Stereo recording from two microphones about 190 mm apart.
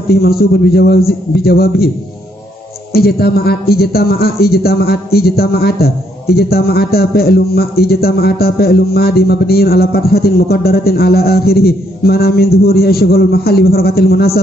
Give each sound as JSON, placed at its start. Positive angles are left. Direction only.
{"t": 0.1, "sound": "a man's voice", "side_deg": 55}
{"t": 2.9, "sound": "a man's voice", "side_deg": 55}